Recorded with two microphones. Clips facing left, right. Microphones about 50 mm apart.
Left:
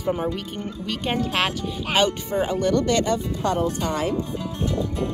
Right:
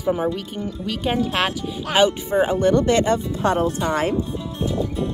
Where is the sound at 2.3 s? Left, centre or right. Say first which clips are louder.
Right 4 dB; right.